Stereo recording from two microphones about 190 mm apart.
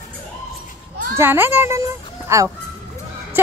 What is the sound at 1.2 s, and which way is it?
Speech, 10° right (ahead or behind).